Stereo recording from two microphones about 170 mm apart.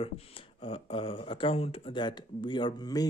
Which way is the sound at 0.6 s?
30° left (ahead or behind).